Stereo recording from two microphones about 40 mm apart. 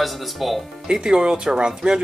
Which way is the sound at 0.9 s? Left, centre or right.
Centre.